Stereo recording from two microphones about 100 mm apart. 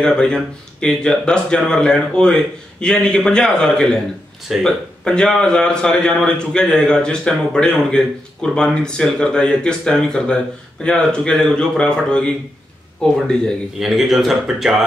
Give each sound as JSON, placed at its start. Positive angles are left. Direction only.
{"t": 0.0, "sound": "a man's voice", "side_deg": 10}